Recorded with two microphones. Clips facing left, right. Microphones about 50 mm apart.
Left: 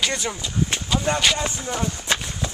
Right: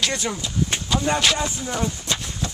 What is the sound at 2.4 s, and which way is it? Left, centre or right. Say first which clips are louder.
Run: even; centre.